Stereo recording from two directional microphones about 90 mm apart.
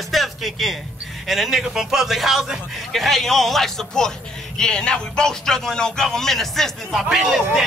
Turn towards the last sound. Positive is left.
turn(degrees=-5)  # may be behind; listen again after turning